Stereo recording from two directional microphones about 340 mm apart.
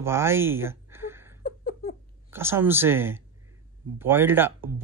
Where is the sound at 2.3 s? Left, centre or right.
Centre.